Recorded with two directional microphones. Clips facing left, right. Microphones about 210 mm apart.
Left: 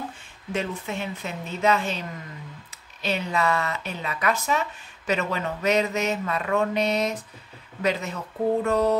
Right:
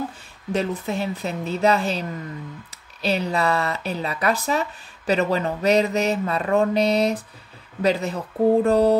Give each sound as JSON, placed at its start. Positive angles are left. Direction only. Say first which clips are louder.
{"t": 0.5, "sound": "speech", "louder": "right 5 dB", "side_deg": -35}